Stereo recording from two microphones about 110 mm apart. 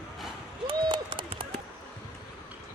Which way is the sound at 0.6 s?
50° right (ahead or behind).